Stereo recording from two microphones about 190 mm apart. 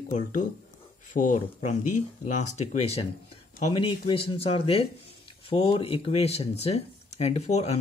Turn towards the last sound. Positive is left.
turn(degrees=35)  # may be behind; listen again after turning